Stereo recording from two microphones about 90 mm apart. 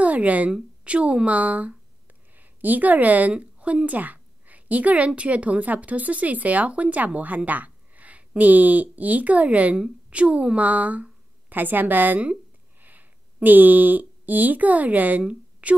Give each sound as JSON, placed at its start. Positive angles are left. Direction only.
{"t": 0.0, "sound": "a woman's voice", "side_deg": -15}